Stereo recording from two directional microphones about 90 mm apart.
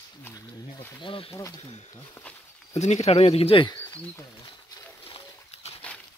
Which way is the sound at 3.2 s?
90° left.